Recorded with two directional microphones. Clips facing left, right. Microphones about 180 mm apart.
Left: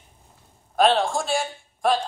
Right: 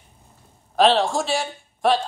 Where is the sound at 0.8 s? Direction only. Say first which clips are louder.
Right 2 dB; centre (ahead or behind).